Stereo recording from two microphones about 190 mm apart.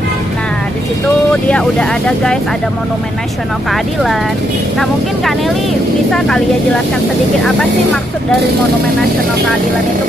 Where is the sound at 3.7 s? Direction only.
Centre (ahead or behind).